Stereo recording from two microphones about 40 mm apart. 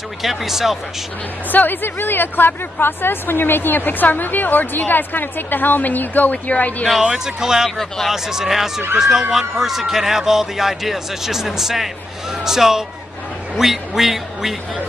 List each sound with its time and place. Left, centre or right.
0.2 s a man's voice: centre
1.5 s speech: left
7.0 s a man's voice: centre